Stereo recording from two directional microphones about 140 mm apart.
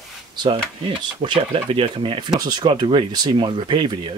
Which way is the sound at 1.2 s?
40° right (ahead or behind).